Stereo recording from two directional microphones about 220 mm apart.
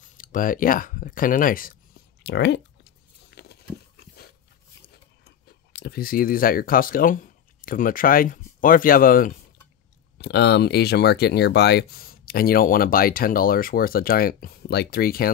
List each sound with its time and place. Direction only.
0.0 s speech: 40° left (ahead or behind)
2.2 s a sound: 50° left (ahead or behind)
5.2 s speech: 50° left (ahead or behind)